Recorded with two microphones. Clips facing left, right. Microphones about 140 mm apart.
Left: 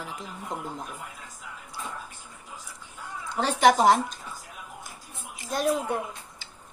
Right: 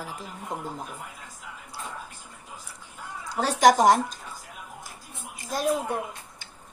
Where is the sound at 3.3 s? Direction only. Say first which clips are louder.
Right 1 dB; 40° right (ahead or behind).